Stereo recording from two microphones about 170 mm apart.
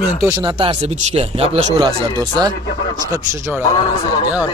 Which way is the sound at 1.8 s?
25° right (ahead or behind).